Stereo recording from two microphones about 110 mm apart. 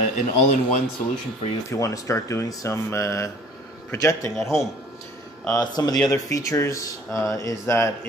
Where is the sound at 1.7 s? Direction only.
30° left (ahead or behind).